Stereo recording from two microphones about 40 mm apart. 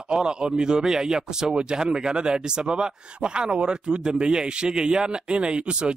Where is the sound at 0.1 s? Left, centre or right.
Centre.